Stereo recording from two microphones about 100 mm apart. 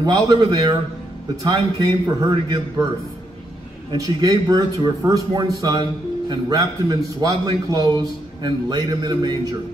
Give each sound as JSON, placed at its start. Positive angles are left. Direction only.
{"t": 0.0, "sound": "a man's voice", "side_deg": -40}
{"t": 3.9, "sound": "a man's voice", "side_deg": -40}